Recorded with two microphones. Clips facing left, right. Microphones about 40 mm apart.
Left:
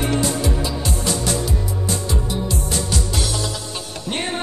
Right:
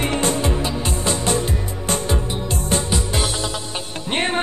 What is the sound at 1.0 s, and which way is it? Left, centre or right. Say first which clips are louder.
Music: right 3 dB; right.